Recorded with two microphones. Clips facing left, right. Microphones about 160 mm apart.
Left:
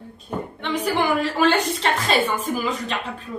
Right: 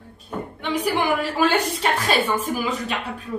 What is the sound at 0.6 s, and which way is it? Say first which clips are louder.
A woman's voice: even; 10° right (ahead or behind).